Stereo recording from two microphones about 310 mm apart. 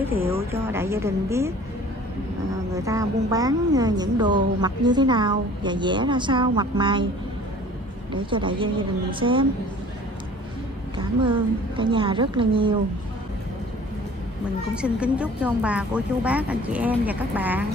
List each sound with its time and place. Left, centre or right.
0.5 s speech: centre
2.7 s speech: centre
8.1 s speech: centre
11.0 s speech: centre
14.8 s speech: centre